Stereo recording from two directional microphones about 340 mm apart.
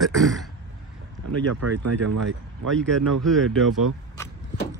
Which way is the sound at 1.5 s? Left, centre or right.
Right.